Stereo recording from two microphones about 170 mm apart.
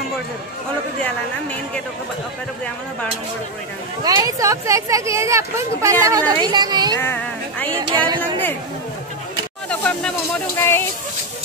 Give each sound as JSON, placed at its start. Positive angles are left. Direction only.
{"t": 4.0, "sound": "speech", "side_deg": -20}
{"t": 7.0, "sound": "speech", "side_deg": 10}
{"t": 7.8, "sound": "speech", "side_deg": -25}
{"t": 9.7, "sound": "speech", "side_deg": 10}